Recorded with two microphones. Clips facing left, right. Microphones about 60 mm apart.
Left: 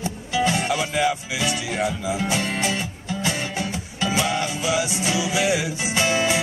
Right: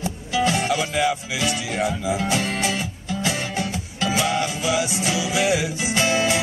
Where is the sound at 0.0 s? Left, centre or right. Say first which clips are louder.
Right 1 dB; centre.